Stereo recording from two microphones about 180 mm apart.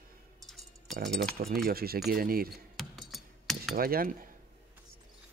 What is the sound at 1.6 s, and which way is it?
Speech, 55° right (ahead or behind).